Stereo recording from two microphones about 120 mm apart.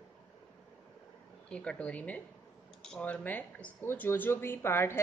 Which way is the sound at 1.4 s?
10° left (ahead or behind).